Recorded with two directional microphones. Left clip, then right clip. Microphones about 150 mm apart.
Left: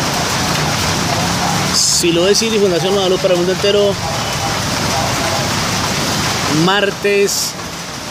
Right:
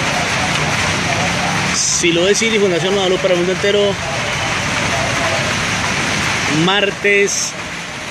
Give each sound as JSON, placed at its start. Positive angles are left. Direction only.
{"t": 2.0, "sound": "speech", "side_deg": 0}
{"t": 6.6, "sound": "speech", "side_deg": 5}